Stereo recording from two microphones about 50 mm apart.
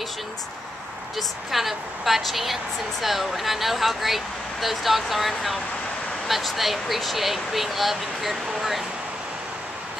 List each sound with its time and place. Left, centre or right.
1.1 s a woman's voice: centre